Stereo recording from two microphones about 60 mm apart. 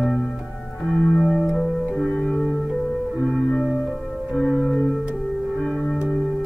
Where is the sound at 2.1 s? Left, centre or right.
Centre.